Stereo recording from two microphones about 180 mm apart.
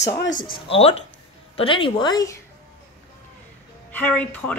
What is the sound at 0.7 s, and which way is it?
A woman's voice, 30° left (ahead or behind).